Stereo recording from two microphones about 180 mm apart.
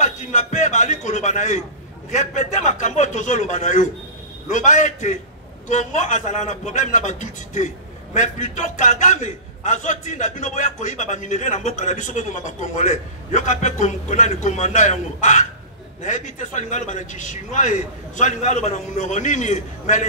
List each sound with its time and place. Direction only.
0.0 s a man's voice: 40° left (ahead or behind)